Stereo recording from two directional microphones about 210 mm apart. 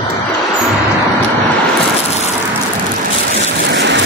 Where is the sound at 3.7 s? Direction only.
55° right (ahead or behind).